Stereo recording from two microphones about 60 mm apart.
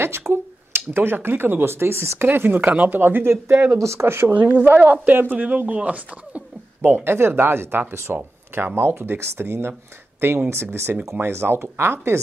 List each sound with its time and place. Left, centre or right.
0.3 s speech: right
3.0 s speech: right
3.7 s speech: right
4.3 s speech: right
6.9 s speech: right